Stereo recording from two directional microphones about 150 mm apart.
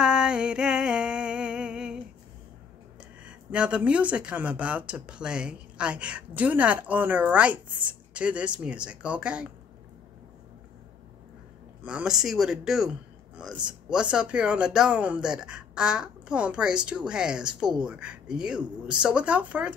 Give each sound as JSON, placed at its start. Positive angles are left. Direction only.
{"t": 0.0, "sound": "music", "side_deg": -5}
{"t": 3.3, "sound": "speech", "side_deg": -5}
{"t": 11.8, "sound": "speech", "side_deg": -5}